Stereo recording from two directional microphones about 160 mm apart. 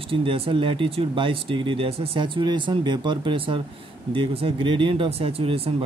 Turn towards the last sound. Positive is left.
turn(degrees=-35)  # may be behind; listen again after turning